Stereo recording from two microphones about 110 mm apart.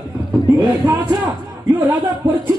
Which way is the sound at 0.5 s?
25° right (ahead or behind).